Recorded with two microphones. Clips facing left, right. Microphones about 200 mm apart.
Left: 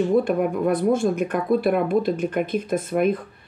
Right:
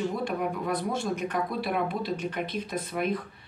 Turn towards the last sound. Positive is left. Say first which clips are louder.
# left 8 dB
turn(degrees=50)  # may be behind; listen again after turning